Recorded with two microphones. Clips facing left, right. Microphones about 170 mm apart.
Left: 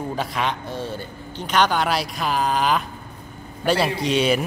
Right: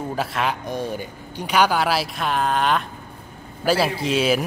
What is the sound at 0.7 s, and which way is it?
Speech, 15° right (ahead or behind).